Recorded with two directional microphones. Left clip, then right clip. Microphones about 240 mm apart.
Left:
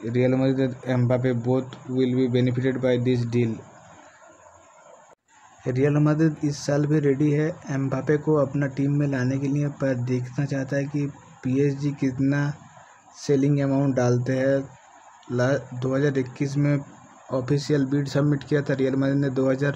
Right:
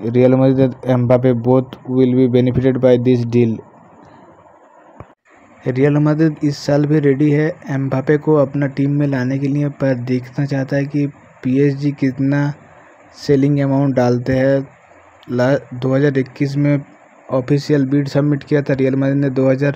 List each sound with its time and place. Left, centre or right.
0.0 s speech: right
5.6 s speech: centre